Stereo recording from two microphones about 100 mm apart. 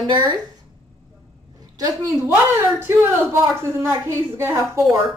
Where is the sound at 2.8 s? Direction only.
25° right (ahead or behind).